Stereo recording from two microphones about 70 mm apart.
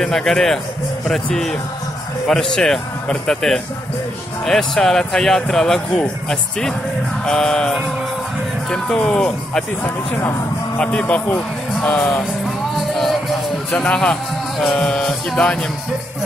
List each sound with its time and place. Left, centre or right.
0.0 s speech: centre
9.8 s speech: left
10.8 s speech: centre
12.4 s music: centre
13.7 s speech: centre